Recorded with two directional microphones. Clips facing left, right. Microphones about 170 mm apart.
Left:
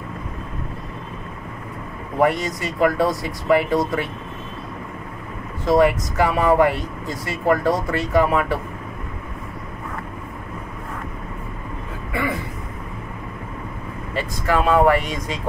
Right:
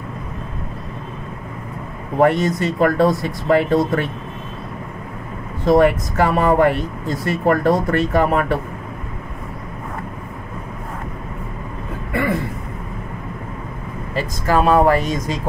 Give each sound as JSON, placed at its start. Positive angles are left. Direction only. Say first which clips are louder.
{"t": 2.2, "sound": "speech", "louder": "right 5 dB", "side_deg": -60}
{"t": 5.7, "sound": "speech", "louder": "right 3 dB", "side_deg": -60}
{"t": 14.1, "sound": "speech", "louder": "right 3 dB", "side_deg": -40}